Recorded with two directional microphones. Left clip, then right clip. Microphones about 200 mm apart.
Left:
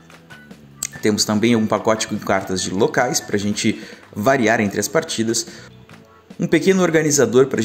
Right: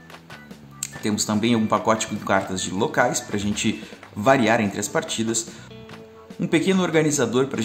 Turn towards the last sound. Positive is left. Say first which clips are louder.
# left 7 dB
turn(degrees=10)  # may be behind; listen again after turning